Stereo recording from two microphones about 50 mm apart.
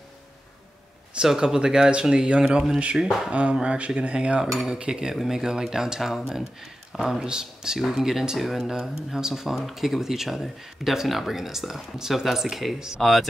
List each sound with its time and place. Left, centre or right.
1.2 s speech: centre
13.0 s speech: centre